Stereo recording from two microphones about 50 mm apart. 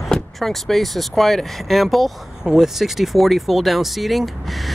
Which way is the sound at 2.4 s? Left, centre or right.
Centre.